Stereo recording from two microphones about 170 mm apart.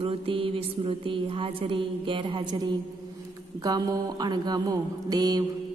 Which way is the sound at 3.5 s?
20° right (ahead or behind).